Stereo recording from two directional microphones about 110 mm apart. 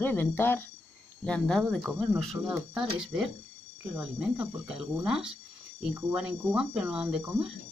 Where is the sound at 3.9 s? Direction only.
10° right (ahead or behind).